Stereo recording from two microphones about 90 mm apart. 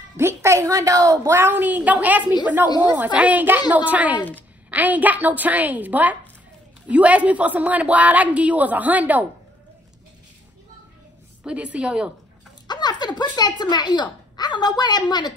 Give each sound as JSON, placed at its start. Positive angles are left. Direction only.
{"t": 0.2, "sound": "a woman's voice", "side_deg": -30}
{"t": 4.2, "sound": "a woman's voice", "side_deg": 20}
{"t": 4.6, "sound": "a woman's voice", "side_deg": -15}
{"t": 11.4, "sound": "a woman's voice", "side_deg": -15}
{"t": 12.6, "sound": "speech", "side_deg": 55}